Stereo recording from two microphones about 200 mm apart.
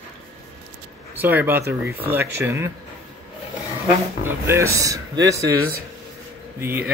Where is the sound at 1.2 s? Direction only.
10° right (ahead or behind).